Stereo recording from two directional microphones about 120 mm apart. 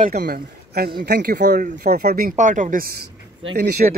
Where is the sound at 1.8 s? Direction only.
90° right.